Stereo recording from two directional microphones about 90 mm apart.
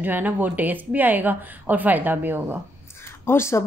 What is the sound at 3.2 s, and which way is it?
Speech, 30° left (ahead or behind).